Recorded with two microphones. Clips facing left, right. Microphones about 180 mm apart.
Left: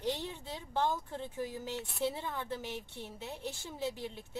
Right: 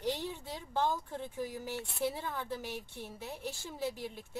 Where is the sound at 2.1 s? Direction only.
20° left (ahead or behind).